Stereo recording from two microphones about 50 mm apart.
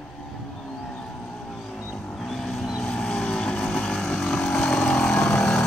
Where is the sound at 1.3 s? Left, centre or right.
Centre.